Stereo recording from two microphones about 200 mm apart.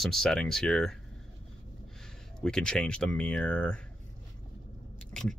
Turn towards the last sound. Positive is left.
turn(degrees=5)  # may be behind; listen again after turning